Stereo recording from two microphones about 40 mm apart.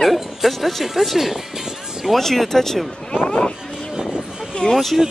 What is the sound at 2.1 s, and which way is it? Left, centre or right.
Speech, centre.